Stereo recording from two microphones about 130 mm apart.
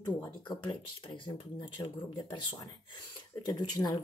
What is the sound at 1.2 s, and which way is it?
Speech, 35° left (ahead or behind).